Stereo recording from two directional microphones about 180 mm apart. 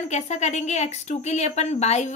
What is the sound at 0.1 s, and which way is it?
A woman's voice, 40° left (ahead or behind).